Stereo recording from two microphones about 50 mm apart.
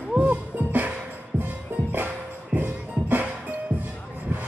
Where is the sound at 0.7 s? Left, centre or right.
Right.